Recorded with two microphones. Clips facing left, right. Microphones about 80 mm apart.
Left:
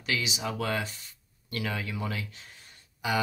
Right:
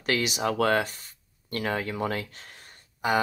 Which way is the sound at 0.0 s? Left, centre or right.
Right.